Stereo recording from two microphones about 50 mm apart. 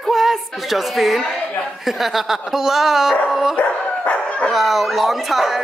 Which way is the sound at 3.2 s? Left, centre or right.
Centre.